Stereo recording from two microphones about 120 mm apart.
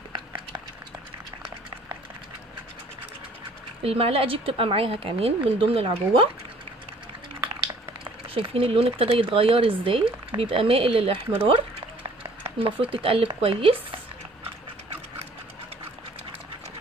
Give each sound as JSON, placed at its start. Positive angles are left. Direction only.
{"t": 3.8, "sound": "speech", "side_deg": -50}
{"t": 8.0, "sound": "speech", "side_deg": -50}
{"t": 11.4, "sound": "a sound", "side_deg": -45}
{"t": 12.8, "sound": "speech", "side_deg": -50}